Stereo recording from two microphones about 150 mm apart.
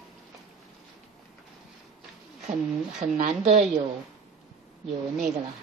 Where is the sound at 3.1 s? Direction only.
55° right (ahead or behind).